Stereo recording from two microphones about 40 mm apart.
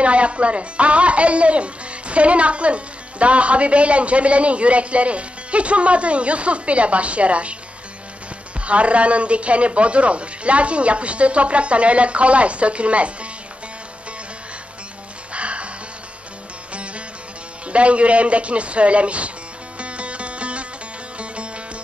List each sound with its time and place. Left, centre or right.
0.0 s speech: right
8.5 s speech: right
15.3 s music: right
16.7 s music: right
17.6 s speech: right
19.8 s music: right